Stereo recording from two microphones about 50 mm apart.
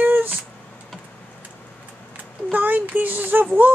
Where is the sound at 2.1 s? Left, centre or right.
Right.